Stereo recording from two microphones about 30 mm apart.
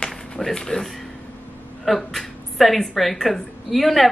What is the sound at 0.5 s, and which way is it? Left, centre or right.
Speech, left.